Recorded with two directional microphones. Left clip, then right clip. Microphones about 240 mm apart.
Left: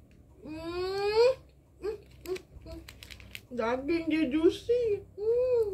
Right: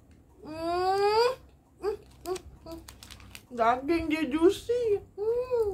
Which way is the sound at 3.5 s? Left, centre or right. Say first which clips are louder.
Right 5 dB; right.